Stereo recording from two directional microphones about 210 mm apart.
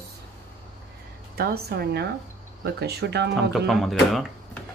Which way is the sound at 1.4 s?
50° right (ahead or behind).